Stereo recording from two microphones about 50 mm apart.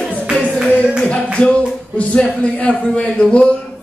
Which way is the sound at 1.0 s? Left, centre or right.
Centre.